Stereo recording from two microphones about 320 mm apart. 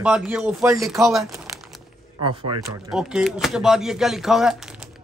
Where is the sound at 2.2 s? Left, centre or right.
Centre.